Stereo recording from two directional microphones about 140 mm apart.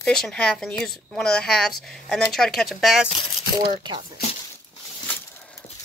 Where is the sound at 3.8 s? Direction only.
30° right (ahead or behind).